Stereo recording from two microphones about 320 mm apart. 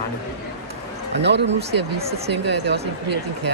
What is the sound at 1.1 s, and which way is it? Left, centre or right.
Speech, right.